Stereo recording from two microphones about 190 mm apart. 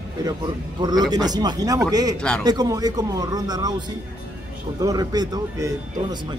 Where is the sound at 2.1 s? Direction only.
5° left (ahead or behind).